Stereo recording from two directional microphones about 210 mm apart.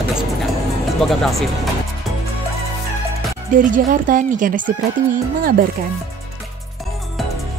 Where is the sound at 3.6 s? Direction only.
40° right (ahead or behind).